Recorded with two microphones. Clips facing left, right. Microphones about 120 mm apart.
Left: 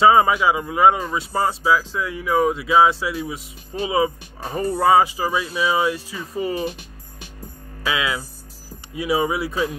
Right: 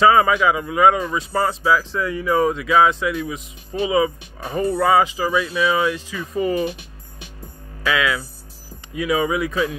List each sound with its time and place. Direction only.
0.0 s speech: 25° left (ahead or behind)
1.3 s speech: 15° left (ahead or behind)
2.6 s speech: 25° left (ahead or behind)
7.9 s speech: 25° left (ahead or behind)